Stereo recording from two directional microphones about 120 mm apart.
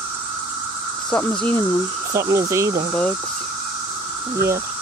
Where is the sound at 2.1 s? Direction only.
25° right (ahead or behind).